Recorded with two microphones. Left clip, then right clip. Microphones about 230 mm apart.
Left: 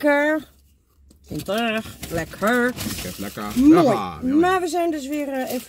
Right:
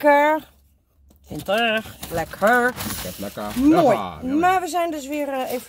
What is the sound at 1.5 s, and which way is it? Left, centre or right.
Speech, centre.